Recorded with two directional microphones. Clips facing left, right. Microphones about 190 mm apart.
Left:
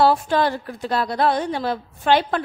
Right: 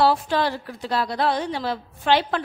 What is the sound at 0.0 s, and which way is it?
A woman's voice, 50° left (ahead or behind).